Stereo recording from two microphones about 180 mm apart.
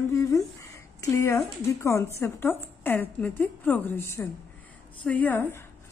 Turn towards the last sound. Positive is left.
turn(degrees=10)  # may be behind; listen again after turning